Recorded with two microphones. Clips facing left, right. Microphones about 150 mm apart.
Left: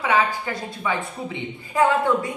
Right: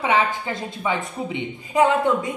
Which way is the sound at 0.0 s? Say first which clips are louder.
Even; 20° right (ahead or behind).